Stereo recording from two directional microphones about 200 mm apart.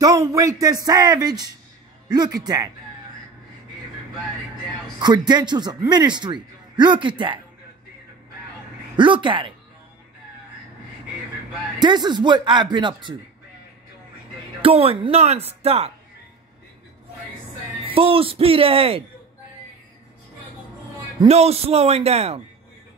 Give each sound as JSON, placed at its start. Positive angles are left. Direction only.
{"t": 0.0, "sound": "speech", "side_deg": -15}
{"t": 4.9, "sound": "speech", "side_deg": -20}
{"t": 8.9, "sound": "speech", "side_deg": -25}
{"t": 11.8, "sound": "speech", "side_deg": -20}
{"t": 14.6, "sound": "speech", "side_deg": -30}
{"t": 17.8, "sound": "speech", "side_deg": -30}
{"t": 21.2, "sound": "speech", "side_deg": -30}